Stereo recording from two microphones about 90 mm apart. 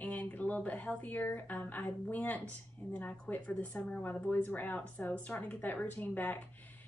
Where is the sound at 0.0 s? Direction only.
15° left (ahead or behind).